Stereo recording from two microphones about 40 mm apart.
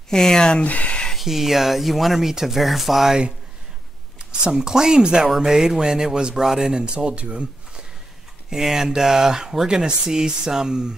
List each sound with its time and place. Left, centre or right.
0.1 s speech: centre
0.7 s speech: left
1.2 s speech: centre
4.2 s speech: right
8.5 s speech: centre